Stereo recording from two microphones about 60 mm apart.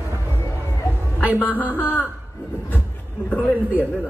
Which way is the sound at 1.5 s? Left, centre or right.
Left.